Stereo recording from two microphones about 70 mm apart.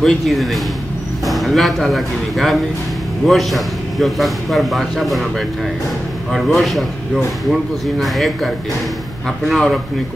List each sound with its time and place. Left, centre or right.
0.0 s a man's voice: centre
6.3 s a man's voice: centre